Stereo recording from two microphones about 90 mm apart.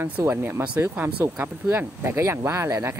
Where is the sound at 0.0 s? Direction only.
25° right (ahead or behind).